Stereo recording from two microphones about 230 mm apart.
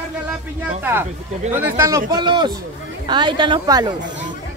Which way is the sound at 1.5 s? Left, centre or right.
Centre.